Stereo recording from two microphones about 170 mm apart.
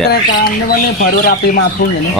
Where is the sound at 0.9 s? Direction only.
55° left (ahead or behind).